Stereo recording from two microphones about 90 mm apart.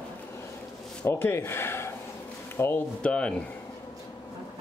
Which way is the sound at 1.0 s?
25° left (ahead or behind).